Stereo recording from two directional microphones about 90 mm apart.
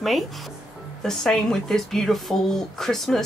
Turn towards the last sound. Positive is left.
turn(degrees=5)  # may be behind; listen again after turning